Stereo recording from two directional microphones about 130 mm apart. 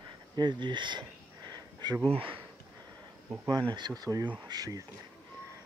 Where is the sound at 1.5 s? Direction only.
30° right (ahead or behind).